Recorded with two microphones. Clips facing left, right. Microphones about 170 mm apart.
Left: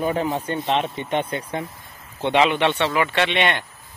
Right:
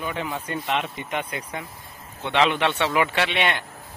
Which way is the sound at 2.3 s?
5° left (ahead or behind).